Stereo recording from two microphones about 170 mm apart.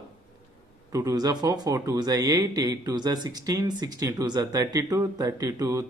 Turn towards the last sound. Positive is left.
turn(degrees=-20)  # may be behind; listen again after turning